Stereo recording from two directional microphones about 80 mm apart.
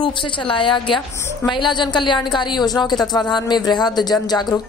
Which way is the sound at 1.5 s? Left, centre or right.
Left.